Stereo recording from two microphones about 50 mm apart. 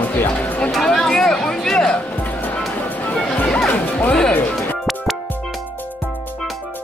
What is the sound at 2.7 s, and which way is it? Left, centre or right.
Music, left.